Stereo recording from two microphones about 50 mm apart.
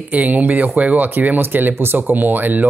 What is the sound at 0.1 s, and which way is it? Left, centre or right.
Speech, right.